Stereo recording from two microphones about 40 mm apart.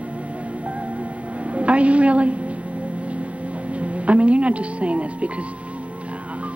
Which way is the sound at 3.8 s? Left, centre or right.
Right.